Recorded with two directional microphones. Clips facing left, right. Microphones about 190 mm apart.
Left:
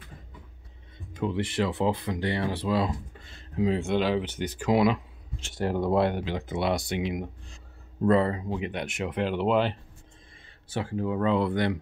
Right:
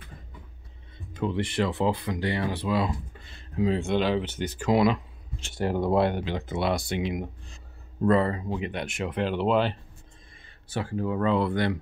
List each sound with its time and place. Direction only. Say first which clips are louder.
1.1 s speech: right 1 dB; 10° left (ahead or behind)
1.8 s speech: right 1 dB; 20° left (ahead or behind); by 3.4 s 40° left (ahead or behind)
3.7 s speech: right 1 dB; 5° left (ahead or behind)
5.4 s speech: right 1 dB; centre (ahead or behind); by 7.0 s 20° left (ahead or behind)
7.0 s speech: right 1 dB; 5° left (ahead or behind)
8.1 s speech: even; 20° left (ahead or behind)